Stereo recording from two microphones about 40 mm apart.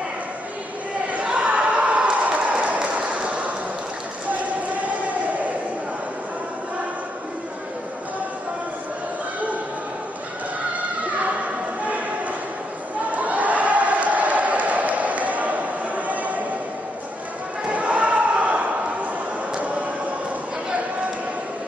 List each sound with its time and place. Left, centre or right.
1.1 s crowd: right
4.3 s basketball bounce: right
13.1 s crowd: right
17.6 s a sound: right